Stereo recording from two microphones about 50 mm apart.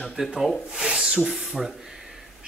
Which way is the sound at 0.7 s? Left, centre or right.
Centre.